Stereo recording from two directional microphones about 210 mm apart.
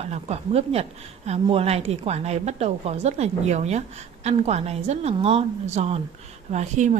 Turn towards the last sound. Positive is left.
turn(degrees=-35)  # may be behind; listen again after turning